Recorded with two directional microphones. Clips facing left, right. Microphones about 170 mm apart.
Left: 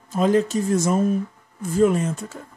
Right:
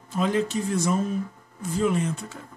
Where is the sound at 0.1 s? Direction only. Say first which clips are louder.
Left 5 dB; 45° left (ahead or behind).